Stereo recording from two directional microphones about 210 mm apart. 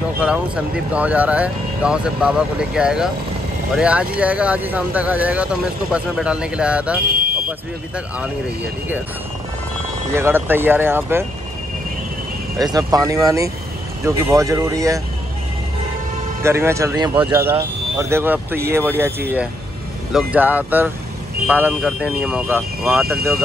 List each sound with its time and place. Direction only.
0.2 s speech: 5° right (ahead or behind)
10.1 s speech: 10° right (ahead or behind)
12.5 s speech: 15° right (ahead or behind)
16.4 s speech: 10° right (ahead or behind)